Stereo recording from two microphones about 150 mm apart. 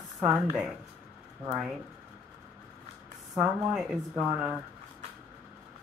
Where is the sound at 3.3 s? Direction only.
Centre (ahead or behind).